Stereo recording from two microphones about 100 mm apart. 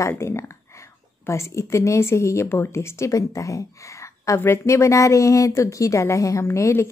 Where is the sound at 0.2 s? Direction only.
25° left (ahead or behind).